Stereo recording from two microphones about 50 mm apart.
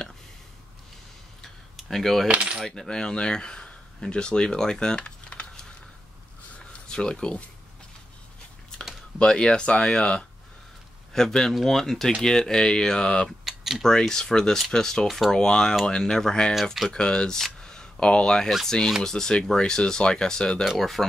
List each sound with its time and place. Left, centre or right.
1.9 s speech: centre
2.2 s coin: right
2.6 s speech: centre
6.9 s speech: centre
9.2 s speech: centre
13.4 s typing: centre
13.8 s speech: centre
15.3 s speech: centre
17.6 s a sound: centre
18.7 s speech: centre
20.6 s speech: centre